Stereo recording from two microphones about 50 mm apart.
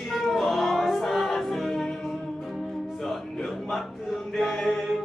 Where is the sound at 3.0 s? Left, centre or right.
Centre.